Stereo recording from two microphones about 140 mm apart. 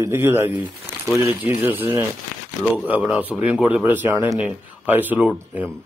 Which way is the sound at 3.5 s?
10° right (ahead or behind).